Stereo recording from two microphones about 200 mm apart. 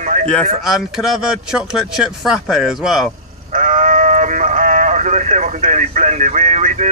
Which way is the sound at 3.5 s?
40° right (ahead or behind).